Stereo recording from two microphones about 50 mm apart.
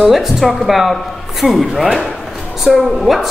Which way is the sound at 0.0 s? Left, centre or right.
Centre.